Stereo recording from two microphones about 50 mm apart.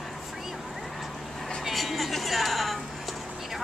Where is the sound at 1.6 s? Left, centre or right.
Centre.